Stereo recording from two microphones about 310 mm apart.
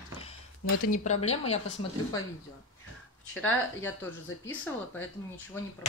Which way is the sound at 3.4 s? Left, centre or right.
Centre.